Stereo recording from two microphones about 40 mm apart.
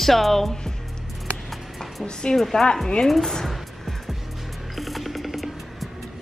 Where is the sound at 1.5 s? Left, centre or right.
Centre.